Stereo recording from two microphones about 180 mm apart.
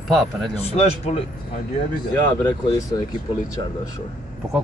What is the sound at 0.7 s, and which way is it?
Speech, 35° left (ahead or behind).